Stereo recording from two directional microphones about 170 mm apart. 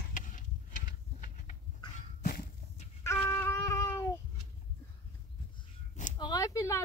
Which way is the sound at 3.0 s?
15° left (ahead or behind).